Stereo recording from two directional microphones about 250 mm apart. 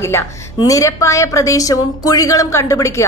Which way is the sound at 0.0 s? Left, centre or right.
Centre.